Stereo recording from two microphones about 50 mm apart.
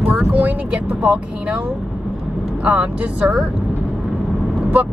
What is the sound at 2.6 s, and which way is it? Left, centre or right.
Speech, right.